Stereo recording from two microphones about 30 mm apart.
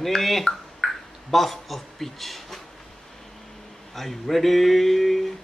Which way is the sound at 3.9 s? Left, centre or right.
Centre.